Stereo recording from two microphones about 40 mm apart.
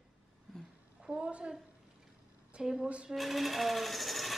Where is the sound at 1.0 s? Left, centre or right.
Right.